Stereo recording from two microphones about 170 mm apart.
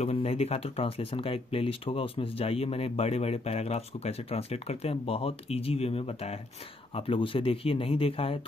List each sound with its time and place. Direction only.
0.0 s speech: 35° left (ahead or behind)